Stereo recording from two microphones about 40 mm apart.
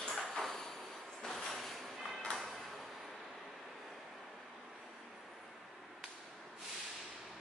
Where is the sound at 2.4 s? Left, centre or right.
Centre.